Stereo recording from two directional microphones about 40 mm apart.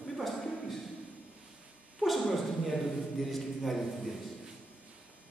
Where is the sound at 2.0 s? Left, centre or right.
Centre.